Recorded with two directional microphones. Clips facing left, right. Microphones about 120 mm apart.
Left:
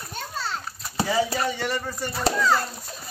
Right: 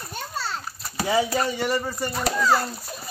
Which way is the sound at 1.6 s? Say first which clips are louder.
Right 3 dB; 10° right (ahead or behind).